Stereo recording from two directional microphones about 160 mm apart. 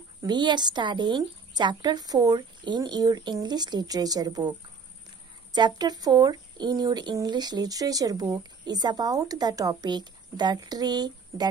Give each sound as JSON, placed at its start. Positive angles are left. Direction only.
{"t": 0.2, "sound": "speech", "side_deg": -30}